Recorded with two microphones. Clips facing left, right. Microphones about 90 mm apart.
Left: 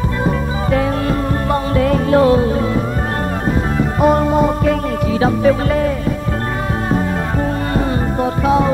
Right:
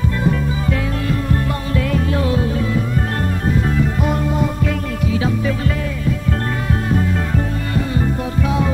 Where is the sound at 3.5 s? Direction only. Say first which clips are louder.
Even; 40° left (ahead or behind).